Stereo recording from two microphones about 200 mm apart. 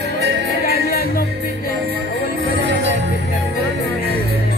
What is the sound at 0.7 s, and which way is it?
Music, 50° left (ahead or behind).